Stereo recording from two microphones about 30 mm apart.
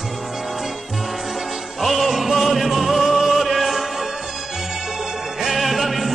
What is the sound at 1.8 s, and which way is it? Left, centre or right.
Music, centre.